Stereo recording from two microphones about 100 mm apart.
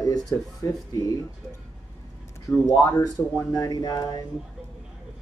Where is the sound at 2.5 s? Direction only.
30° left (ahead or behind).